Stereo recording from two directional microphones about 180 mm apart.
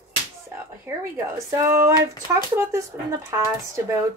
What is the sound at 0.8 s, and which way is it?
Speech, 15° right (ahead or behind).